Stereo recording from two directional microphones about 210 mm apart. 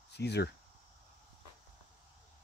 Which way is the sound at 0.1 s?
55° left (ahead or behind).